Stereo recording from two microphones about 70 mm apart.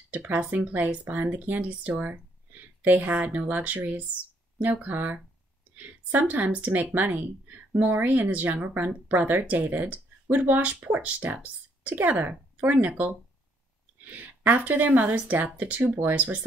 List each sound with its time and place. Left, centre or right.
0.1 s a woman's voice: right
14.1 s a woman's voice: right